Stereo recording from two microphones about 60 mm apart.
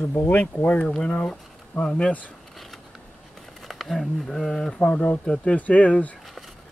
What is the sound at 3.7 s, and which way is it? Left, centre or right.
Speech, centre.